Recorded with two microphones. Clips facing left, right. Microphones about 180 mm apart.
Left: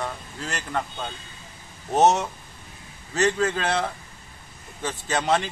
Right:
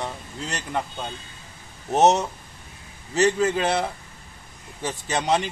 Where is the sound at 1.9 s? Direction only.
20° right (ahead or behind).